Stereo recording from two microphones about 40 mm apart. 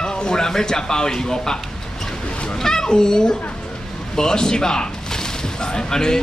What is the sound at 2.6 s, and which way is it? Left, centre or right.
Speech, centre.